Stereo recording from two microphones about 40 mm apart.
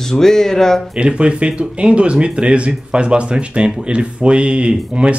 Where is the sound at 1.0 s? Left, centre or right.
Right.